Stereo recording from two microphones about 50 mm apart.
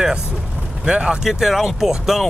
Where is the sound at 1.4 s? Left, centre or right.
Centre.